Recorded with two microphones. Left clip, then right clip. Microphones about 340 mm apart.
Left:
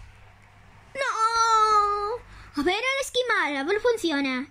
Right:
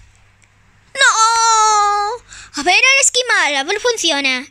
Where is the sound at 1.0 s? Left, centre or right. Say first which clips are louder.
Right 11 dB; centre.